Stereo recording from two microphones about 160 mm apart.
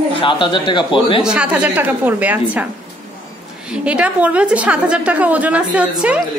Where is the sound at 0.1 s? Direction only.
30° left (ahead or behind).